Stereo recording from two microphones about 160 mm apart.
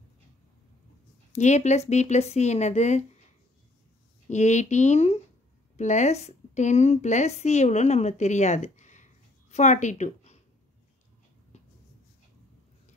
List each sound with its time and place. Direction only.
1.3 s speech: 45° left (ahead or behind)
4.3 s a woman's voice: 45° left (ahead or behind)